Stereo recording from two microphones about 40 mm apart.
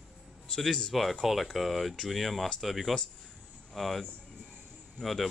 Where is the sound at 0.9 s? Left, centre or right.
Centre.